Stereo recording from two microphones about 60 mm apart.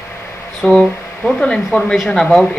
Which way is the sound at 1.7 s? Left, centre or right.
Left.